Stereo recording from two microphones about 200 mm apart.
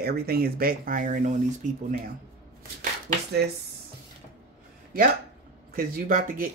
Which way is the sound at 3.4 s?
55° right (ahead or behind).